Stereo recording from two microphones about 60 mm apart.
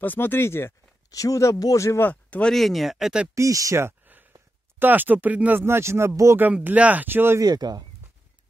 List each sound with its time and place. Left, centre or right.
0.0 s speech: left
1.1 s speech: left
2.0 s speech: left
2.5 s speech: centre
3.3 s speech: right
4.0 s a sound: right
4.7 s speech: right
5.6 s speech: right
6.6 s speech: right
7.3 s speech: right